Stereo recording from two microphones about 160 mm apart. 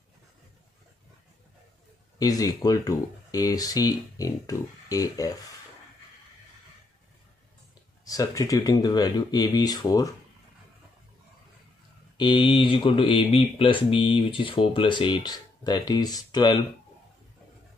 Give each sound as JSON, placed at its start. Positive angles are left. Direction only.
{"t": 2.1, "sound": "speech", "side_deg": 25}
{"t": 8.0, "sound": "speech", "side_deg": 20}
{"t": 12.2, "sound": "speech", "side_deg": 30}